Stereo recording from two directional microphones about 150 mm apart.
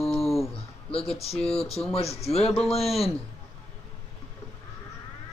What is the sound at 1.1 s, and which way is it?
Speech, 45° left (ahead or behind).